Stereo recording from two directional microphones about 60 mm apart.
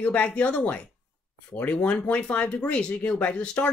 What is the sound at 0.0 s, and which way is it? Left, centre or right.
Speech, left.